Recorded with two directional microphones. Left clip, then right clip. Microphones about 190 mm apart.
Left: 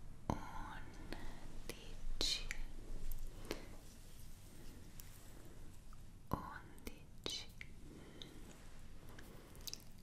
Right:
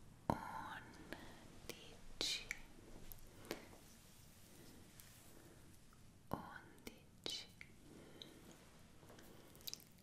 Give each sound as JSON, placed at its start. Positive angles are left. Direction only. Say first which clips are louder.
{"t": 0.3, "sound": "whispering", "louder": "right 2 dB", "side_deg": -20}
{"t": 1.7, "sound": "whispering", "louder": "left 1 dB", "side_deg": 0}
{"t": 3.5, "sound": "a sound", "louder": "left 2 dB", "side_deg": 0}
{"t": 6.2, "sound": "whispering", "louder": "left 3 dB", "side_deg": 5}
{"t": 9.7, "sound": "biting", "louder": "left 1 dB", "side_deg": 0}